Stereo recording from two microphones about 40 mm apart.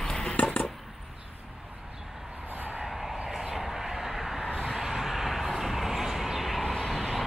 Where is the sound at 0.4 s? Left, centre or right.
Left.